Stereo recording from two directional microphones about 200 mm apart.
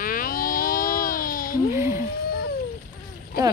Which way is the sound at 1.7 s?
10° right (ahead or behind).